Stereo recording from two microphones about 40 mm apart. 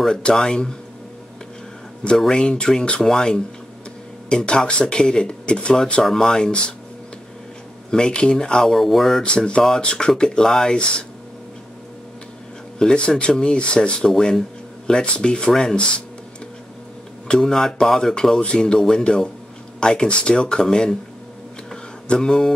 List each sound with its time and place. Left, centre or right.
0.1 s speech: centre
2.1 s speech: centre
7.9 s speech: left
8.7 s speech: centre
9.2 s speech: left
10.8 s speech: left
12.7 s speech: left
14.1 s speech: centre
14.9 s speech: left
17.3 s speech: centre
22.0 s speech: left